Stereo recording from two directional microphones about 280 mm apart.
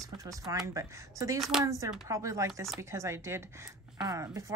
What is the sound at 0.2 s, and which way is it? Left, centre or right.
Speech, centre.